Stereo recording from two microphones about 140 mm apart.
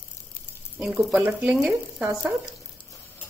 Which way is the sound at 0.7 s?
5° right (ahead or behind).